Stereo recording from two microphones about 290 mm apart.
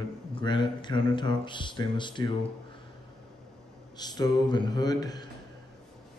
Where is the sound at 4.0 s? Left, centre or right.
Centre.